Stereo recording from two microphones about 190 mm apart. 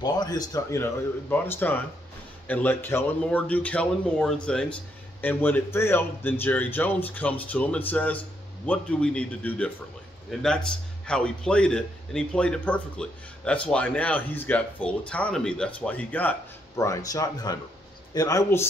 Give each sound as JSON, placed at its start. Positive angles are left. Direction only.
{"t": 0.0, "sound": "a man's voice", "side_deg": 20}